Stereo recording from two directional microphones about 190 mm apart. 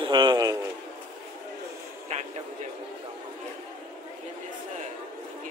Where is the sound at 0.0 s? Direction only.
25° right (ahead or behind).